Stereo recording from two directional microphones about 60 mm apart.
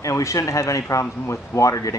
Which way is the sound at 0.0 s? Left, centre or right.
Left.